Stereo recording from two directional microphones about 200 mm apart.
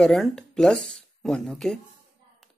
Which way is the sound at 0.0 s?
Centre (ahead or behind).